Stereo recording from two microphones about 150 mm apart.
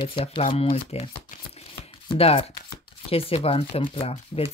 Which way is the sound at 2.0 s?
40° left (ahead or behind).